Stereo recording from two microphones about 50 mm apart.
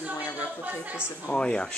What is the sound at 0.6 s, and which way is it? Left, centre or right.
Speech, right.